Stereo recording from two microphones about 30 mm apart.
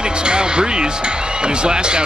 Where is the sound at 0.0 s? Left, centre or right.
Right.